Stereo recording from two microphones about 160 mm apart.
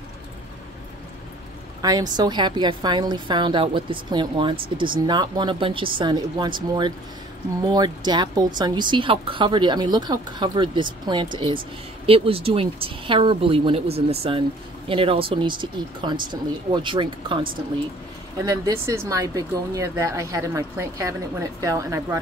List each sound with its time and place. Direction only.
1.8 s speech: 25° right (ahead or behind)
18.4 s speech: 20° right (ahead or behind)